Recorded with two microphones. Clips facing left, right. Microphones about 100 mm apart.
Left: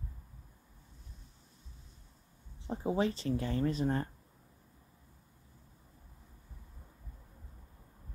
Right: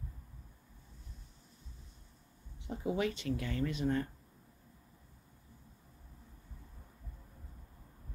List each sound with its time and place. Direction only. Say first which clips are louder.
2.6 s speech: left 3 dB; 35° left (ahead or behind)